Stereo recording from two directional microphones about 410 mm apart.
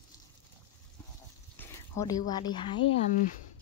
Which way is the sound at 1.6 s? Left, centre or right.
Centre.